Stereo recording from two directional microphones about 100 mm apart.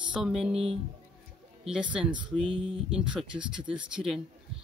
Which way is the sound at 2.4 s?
65° right (ahead or behind).